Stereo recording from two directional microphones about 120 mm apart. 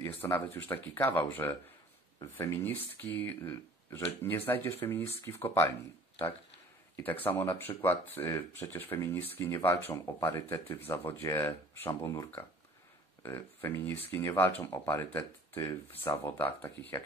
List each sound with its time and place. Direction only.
0.0 s speech: 20° left (ahead or behind)
7.2 s speech: 20° left (ahead or behind)